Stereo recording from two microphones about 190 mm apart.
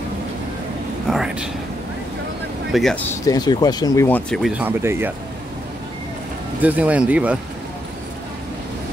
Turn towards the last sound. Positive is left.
turn(degrees=-5)  # may be behind; listen again after turning